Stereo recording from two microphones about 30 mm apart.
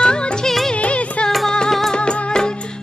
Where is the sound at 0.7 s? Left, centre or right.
Left.